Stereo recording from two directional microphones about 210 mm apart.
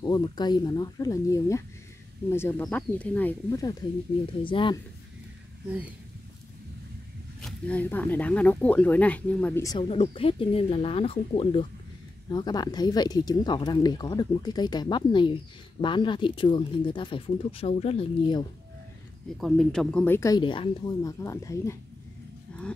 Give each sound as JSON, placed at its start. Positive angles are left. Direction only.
{"t": 0.0, "sound": "speech", "side_deg": 20}
{"t": 7.4, "sound": "speech", "side_deg": 5}
{"t": 9.8, "sound": "speech", "side_deg": 25}
{"t": 19.3, "sound": "speech", "side_deg": 0}
{"t": 22.5, "sound": "cattle", "side_deg": 5}